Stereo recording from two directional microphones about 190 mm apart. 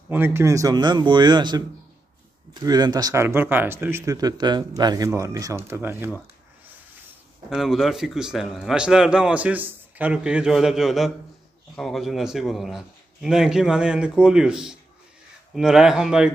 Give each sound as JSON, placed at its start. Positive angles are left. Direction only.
{"t": 0.1, "sound": "speech", "side_deg": -10}
{"t": 7.4, "sound": "a man's voice", "side_deg": 0}